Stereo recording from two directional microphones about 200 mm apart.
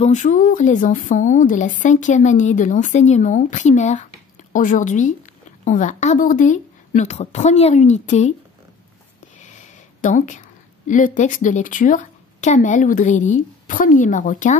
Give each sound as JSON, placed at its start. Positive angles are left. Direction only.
{"t": 0.0, "sound": "a woman's voice", "side_deg": 40}
{"t": 9.4, "sound": "a sound", "side_deg": 35}
{"t": 10.9, "sound": "a woman's voice", "side_deg": 40}